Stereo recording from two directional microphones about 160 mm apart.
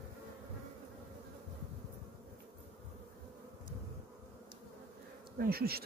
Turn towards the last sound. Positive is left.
turn(degrees=-75)  # may be behind; listen again after turning